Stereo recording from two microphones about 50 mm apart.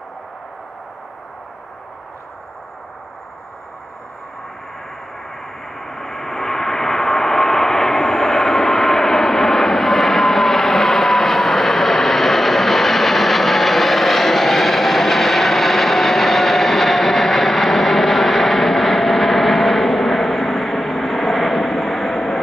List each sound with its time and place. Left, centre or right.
5.8 s vehicle: centre